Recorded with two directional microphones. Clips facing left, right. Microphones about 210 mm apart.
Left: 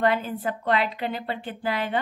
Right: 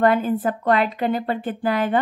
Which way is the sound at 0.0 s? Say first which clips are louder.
Right 6 dB; 45° right (ahead or behind).